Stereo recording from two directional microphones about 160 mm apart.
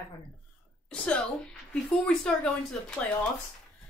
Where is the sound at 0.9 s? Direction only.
5° left (ahead or behind).